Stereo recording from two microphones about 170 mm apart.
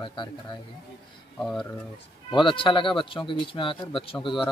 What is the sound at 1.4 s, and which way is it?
Speech, centre (ahead or behind).